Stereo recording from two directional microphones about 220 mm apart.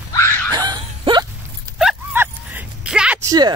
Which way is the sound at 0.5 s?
20° right (ahead or behind).